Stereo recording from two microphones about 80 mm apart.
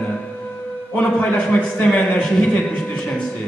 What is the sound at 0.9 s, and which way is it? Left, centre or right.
A man's voice, centre.